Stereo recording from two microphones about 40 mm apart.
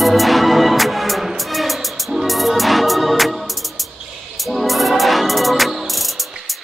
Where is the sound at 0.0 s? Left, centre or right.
Centre.